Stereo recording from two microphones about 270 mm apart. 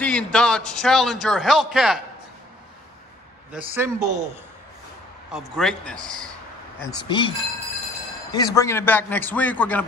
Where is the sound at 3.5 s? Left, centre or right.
Centre.